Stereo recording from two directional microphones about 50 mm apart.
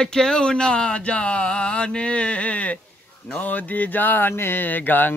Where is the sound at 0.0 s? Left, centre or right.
Centre.